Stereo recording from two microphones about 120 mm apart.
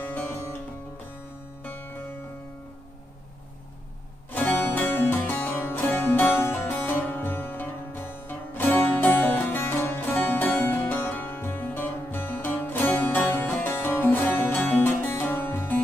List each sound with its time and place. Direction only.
0.0 s music: 15° left (ahead or behind)
1.6 s music: 15° left (ahead or behind)
4.3 s music: 15° left (ahead or behind)